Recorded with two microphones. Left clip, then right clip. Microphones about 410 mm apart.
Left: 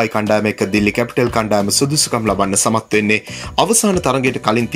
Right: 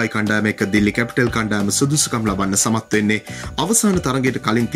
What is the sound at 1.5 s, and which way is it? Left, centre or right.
Speech, centre.